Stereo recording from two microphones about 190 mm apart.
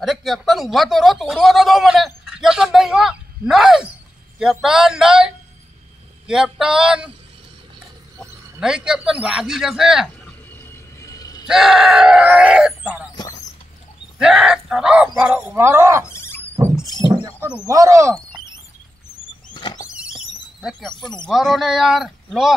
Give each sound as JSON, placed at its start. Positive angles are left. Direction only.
{"t": 0.0, "sound": "speech", "side_deg": 0}
{"t": 8.2, "sound": "speech", "side_deg": -5}
{"t": 10.0, "sound": "a sound", "side_deg": 10}
{"t": 11.4, "sound": "speech", "side_deg": -5}
{"t": 13.1, "sound": "rodents", "side_deg": 20}
{"t": 14.1, "sound": "speech", "side_deg": -5}
{"t": 16.1, "sound": "a sound", "side_deg": 15}
{"t": 17.6, "sound": "speech", "side_deg": -15}
{"t": 19.2, "sound": "a sound", "side_deg": 25}
{"t": 19.9, "sound": "rodents", "side_deg": -5}
{"t": 21.3, "sound": "speech", "side_deg": 0}